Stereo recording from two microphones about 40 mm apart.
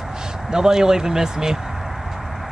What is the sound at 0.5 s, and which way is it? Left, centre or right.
Speech, centre.